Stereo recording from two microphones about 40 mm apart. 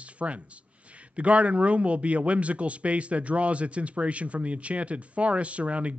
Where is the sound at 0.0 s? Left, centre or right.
Right.